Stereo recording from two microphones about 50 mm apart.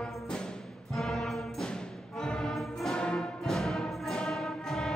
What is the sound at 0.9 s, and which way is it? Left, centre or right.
Music, centre.